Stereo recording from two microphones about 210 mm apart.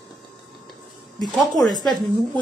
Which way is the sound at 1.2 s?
Centre (ahead or behind).